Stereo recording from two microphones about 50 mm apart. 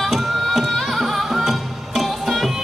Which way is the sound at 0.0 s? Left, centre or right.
Centre.